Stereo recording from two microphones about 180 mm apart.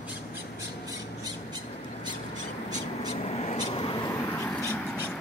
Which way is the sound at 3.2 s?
35° left (ahead or behind).